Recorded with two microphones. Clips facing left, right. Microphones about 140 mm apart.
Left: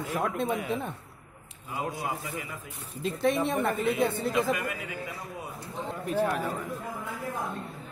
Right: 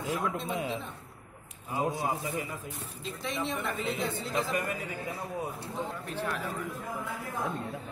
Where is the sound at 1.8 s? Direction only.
25° right (ahead or behind).